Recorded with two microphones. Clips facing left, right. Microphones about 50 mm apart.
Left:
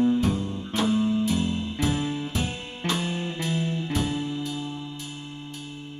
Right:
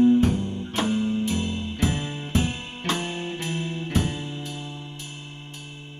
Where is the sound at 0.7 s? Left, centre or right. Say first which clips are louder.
Left 1 dB; right.